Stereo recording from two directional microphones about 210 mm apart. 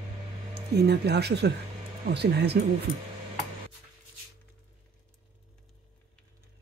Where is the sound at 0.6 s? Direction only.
50° right (ahead or behind).